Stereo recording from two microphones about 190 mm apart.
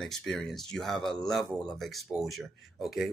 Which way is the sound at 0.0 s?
Centre (ahead or behind).